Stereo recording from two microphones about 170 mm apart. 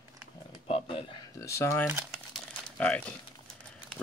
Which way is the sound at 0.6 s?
35° left (ahead or behind).